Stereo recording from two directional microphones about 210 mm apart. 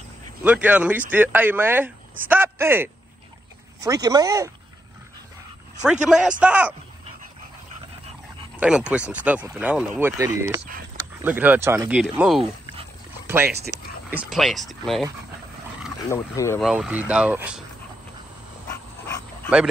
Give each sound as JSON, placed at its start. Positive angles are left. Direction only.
{"t": 0.4, "sound": "speech", "side_deg": -5}
{"t": 5.9, "sound": "speech", "side_deg": -5}
{"t": 8.5, "sound": "speech", "side_deg": -5}
{"t": 14.1, "sound": "speech", "side_deg": 0}
{"t": 16.1, "sound": "speech", "side_deg": 10}
{"t": 16.6, "sound": "speech", "side_deg": -5}